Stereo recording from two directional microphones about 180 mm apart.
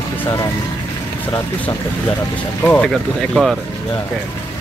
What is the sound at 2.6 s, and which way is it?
Speech, 10° left (ahead or behind).